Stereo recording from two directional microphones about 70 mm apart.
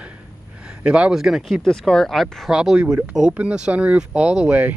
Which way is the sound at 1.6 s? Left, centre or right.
Centre.